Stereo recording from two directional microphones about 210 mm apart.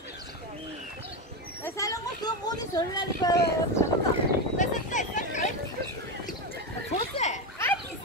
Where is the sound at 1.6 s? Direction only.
15° left (ahead or behind).